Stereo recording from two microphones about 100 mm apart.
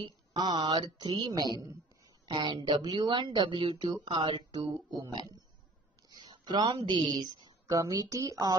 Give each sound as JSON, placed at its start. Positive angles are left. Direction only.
{"t": 0.0, "sound": "a woman's voice", "side_deg": -45}
{"t": 7.6, "sound": "speech", "side_deg": -35}